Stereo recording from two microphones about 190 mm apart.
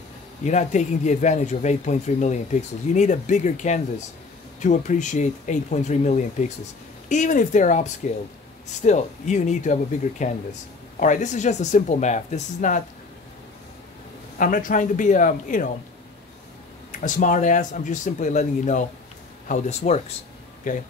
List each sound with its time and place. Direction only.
0.5 s speech: 40° left (ahead or behind)
14.4 s speech: 45° left (ahead or behind)
17.0 s speech: 40° left (ahead or behind)